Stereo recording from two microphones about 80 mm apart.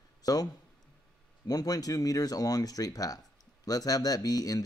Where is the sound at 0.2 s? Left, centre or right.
Left.